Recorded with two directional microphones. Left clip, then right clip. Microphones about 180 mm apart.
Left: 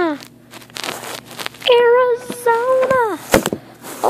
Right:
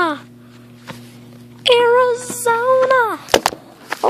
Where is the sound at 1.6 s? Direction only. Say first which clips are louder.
Even; 55° right (ahead or behind).